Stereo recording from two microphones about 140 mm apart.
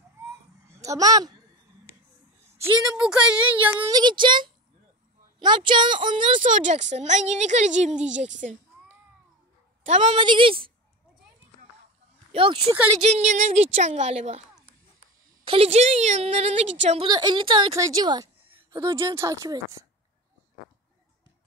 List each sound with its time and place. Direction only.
0.7 s a woman's voice: 25° right (ahead or behind)
3.0 s speech: 5° right (ahead or behind)
3.9 s a woman's voice: 35° right (ahead or behind)
6.4 s a woman's voice: 60° right (ahead or behind)
9.8 s a woman's voice: 55° right (ahead or behind)
10.1 s a woman's voice: 35° right (ahead or behind)
12.3 s speech: 40° right (ahead or behind)
13.1 s a woman's voice: 55° right (ahead or behind)
15.4 s a woman's voice: 45° right (ahead or behind)
17.0 s a woman's voice: 30° right (ahead or behind)
17.7 s a sound: 25° right (ahead or behind)
18.9 s a woman's voice: 35° right (ahead or behind)
19.1 s speech: 20° right (ahead or behind)